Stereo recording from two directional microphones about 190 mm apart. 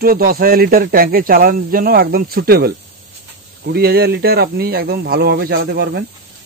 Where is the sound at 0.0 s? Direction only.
50° right (ahead or behind).